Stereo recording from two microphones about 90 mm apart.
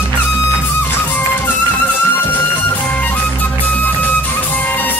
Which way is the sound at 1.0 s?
20° left (ahead or behind).